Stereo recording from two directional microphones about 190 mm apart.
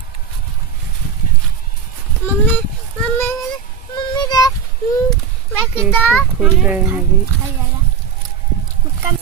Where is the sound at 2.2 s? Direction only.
10° left (ahead or behind).